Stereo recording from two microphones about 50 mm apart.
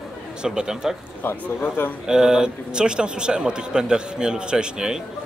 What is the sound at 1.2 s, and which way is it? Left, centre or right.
Speech, left.